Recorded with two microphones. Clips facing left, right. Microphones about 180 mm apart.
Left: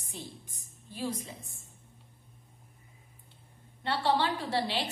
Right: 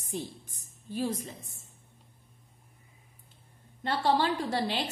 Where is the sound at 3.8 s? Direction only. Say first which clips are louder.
Right 2 dB; 45° right (ahead or behind).